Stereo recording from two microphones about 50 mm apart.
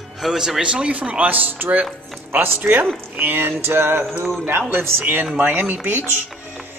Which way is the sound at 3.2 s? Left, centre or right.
Right.